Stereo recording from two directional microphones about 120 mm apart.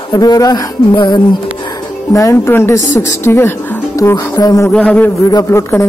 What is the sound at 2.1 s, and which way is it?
A woman's voice, 25° left (ahead or behind).